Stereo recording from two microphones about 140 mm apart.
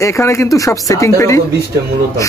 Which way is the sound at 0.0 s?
20° left (ahead or behind).